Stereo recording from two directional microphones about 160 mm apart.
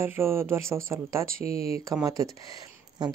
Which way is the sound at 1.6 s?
40° left (ahead or behind).